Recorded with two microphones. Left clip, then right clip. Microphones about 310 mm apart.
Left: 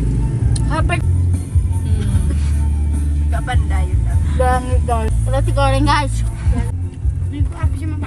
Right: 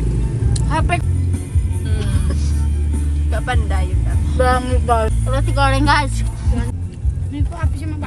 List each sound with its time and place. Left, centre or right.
0.7 s vehicle: centre
1.9 s music: centre
4.3 s speech: centre